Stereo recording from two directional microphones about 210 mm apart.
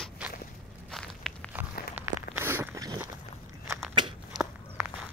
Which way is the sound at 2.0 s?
10° right (ahead or behind).